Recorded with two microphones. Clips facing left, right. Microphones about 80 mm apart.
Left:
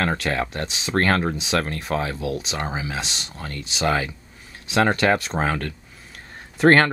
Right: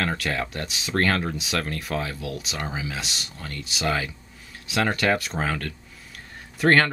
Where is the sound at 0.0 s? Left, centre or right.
Left.